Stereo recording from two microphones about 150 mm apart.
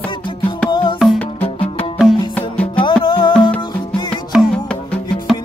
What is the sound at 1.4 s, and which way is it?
Music, 40° left (ahead or behind).